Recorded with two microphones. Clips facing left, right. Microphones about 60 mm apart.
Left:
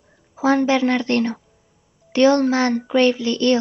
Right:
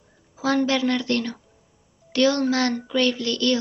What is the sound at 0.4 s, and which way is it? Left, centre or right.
Speech, left.